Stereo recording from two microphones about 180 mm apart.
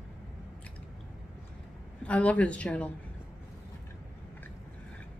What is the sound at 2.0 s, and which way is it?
Speech, 5° left (ahead or behind).